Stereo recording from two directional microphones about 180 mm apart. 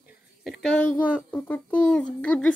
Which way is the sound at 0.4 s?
Centre (ahead or behind).